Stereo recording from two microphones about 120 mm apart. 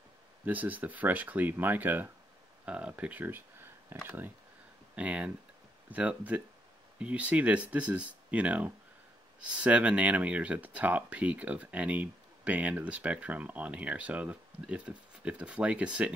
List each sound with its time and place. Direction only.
0.5 s speech: 15° right (ahead or behind)